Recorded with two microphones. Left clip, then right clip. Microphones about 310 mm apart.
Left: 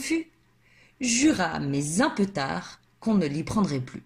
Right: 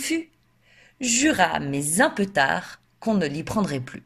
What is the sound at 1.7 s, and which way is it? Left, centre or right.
Speech, right.